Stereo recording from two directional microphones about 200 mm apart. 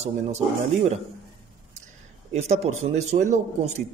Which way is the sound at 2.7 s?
35° right (ahead or behind).